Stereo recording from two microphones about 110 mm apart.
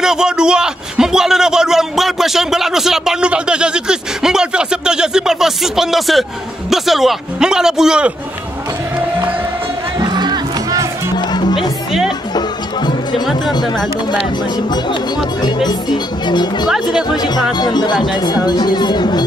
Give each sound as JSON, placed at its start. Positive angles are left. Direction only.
{"t": 0.0, "sound": "a man's voice", "side_deg": -5}
{"t": 9.9, "sound": "music", "side_deg": -40}
{"t": 11.1, "sound": "music", "side_deg": 40}
{"t": 15.4, "sound": "speech", "side_deg": 40}